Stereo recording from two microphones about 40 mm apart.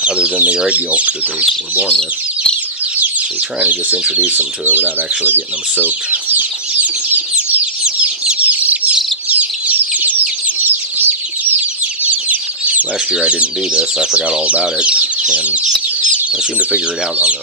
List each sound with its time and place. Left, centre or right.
0.0 s speech: right
3.6 s speech: right
4.2 s speech: right
4.7 s speech: right
6.3 s bird flight: right
7.2 s bird: right
8.5 s chicken: right
12.0 s chicken: right
13.2 s speech: right